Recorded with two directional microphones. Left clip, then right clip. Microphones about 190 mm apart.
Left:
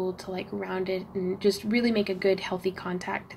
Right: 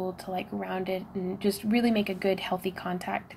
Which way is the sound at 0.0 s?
35° right (ahead or behind).